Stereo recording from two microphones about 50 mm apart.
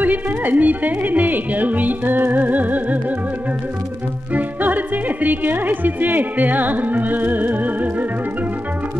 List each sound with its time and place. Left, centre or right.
0.0 s speech: right
4.3 s speech: right